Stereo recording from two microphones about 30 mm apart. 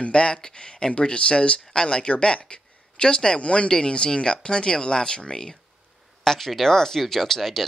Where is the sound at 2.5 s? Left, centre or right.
Left.